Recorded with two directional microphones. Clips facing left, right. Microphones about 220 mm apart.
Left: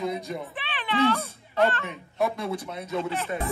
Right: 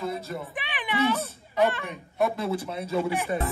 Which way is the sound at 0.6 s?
15° right (ahead or behind).